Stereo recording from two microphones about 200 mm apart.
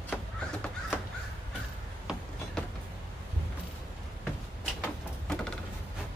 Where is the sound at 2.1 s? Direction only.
5° right (ahead or behind).